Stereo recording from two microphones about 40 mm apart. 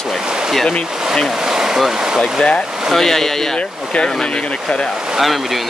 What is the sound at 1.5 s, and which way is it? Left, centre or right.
Speech, centre.